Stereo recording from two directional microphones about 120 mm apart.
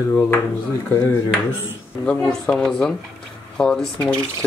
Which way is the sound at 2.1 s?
5° left (ahead or behind).